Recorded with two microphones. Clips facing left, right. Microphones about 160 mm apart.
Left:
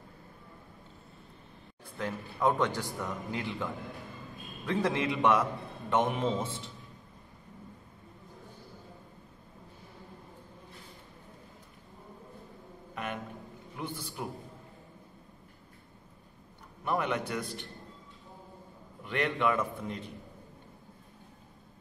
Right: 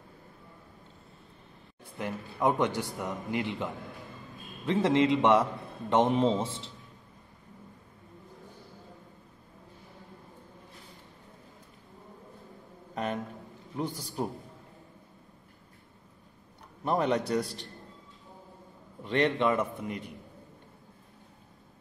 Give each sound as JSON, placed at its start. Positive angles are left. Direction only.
{"t": 2.0, "sound": "a man's voice", "side_deg": -15}
{"t": 12.9, "sound": "a sound", "side_deg": -35}
{"t": 13.7, "sound": "a man's voice", "side_deg": -40}
{"t": 16.8, "sound": "a man's voice", "side_deg": -35}
{"t": 19.0, "sound": "a man's voice", "side_deg": -30}